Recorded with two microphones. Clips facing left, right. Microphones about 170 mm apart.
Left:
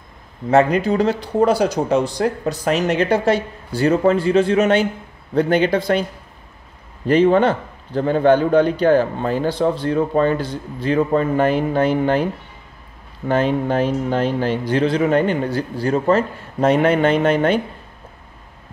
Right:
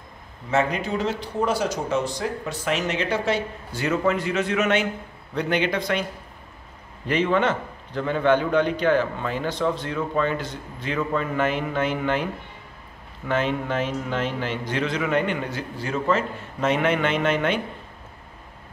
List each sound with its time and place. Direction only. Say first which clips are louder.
0.8 s a man's voice: left 8 dB; 35° left (ahead or behind)
7.1 s a man's voice: left 8 dB; 35° left (ahead or behind)
13.3 s a man's voice: left 6 dB; 35° left (ahead or behind)